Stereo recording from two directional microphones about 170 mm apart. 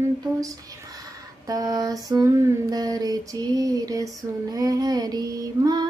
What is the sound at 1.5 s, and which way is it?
Child singing, 20° right (ahead or behind).